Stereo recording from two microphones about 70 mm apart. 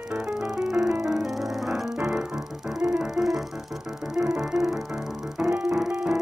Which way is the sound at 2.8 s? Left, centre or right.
Right.